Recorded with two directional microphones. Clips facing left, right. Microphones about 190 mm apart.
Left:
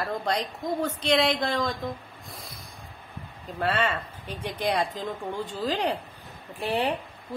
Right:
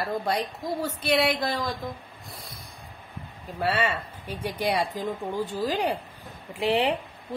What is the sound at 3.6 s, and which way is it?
A woman's voice, 10° right (ahead or behind).